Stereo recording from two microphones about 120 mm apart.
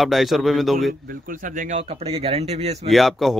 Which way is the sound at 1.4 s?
90° right.